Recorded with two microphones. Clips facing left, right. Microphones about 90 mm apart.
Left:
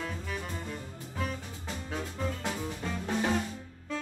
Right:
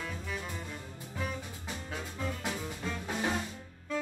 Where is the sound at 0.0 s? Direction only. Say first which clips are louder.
Left 2 dB; 5° left (ahead or behind).